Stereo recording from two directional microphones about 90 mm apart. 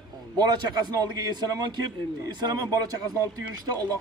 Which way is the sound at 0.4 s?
50° right (ahead or behind).